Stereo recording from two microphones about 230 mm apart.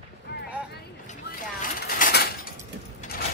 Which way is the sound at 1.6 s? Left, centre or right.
Left.